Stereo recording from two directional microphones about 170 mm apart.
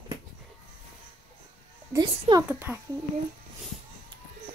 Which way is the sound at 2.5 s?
10° right (ahead or behind).